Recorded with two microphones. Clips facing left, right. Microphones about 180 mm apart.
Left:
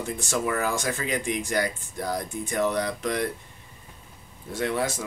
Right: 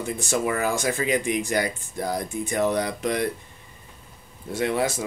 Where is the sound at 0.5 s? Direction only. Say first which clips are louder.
Right 2 dB; 10° right (ahead or behind).